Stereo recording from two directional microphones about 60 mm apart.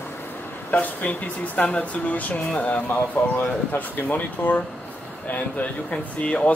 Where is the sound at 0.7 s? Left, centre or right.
Left.